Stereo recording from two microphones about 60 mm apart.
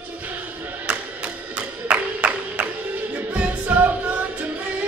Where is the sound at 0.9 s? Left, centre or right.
Right.